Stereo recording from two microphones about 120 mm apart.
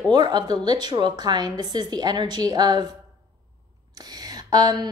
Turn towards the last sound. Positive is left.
turn(degrees=-35)  # may be behind; listen again after turning